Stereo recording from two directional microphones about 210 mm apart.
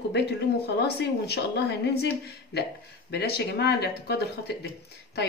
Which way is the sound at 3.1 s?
50° left (ahead or behind).